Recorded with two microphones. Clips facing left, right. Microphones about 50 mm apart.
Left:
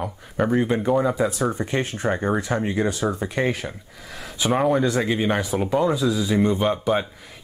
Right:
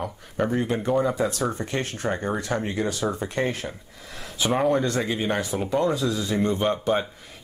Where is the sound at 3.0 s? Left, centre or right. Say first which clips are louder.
Left 2 dB; centre.